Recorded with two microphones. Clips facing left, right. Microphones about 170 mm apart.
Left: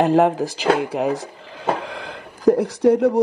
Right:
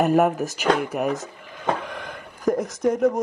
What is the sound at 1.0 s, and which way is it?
Drawer open or close, 35° left (ahead or behind).